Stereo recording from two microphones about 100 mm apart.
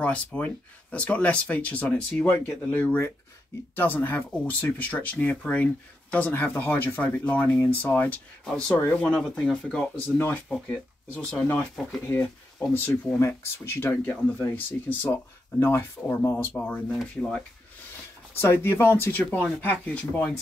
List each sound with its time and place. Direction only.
0.0 s speech: 15° left (ahead or behind)
8.7 s speech: 20° left (ahead or behind)
18.4 s speech: 20° left (ahead or behind)